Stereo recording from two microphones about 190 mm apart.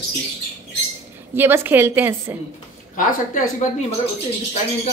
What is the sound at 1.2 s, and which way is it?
A woman's voice, 10° right (ahead or behind).